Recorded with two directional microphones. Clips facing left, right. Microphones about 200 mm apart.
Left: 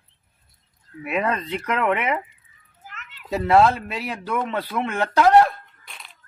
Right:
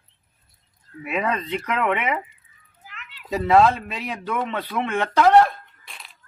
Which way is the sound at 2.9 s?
45° left (ahead or behind).